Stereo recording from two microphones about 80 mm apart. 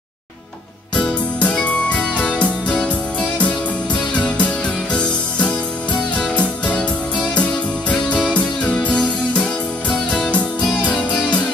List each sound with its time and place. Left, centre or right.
0.9 s music: centre
6.1 s music: centre